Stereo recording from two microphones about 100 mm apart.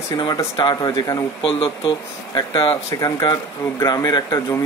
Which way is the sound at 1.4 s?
60° left (ahead or behind).